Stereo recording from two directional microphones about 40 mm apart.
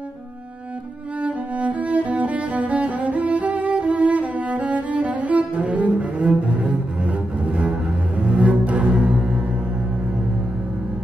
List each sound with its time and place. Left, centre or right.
1.2 s cello: right